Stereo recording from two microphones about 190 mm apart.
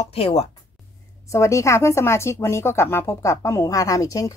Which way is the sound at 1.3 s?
15° left (ahead or behind).